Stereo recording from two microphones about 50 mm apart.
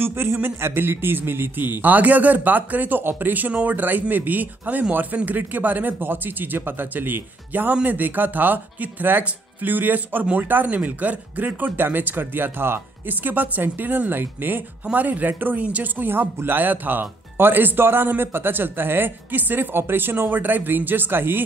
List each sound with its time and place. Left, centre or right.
0.0 s speech: right
10.7 s speech: right
13.1 s speech: right
14.9 s speech: right